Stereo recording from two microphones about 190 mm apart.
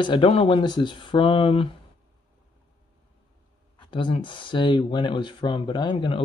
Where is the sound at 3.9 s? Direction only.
25° left (ahead or behind).